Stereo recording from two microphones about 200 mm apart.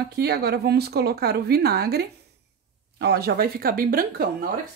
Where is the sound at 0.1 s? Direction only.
55° right (ahead or behind).